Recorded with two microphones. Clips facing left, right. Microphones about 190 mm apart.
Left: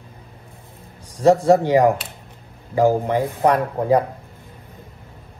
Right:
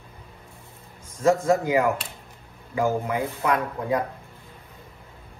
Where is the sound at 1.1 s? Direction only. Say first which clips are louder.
Left 6 dB; 35° left (ahead or behind).